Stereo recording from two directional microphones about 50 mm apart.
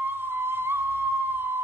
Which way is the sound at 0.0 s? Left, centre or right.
Right.